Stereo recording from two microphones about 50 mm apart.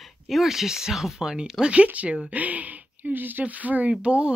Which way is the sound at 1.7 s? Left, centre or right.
Right.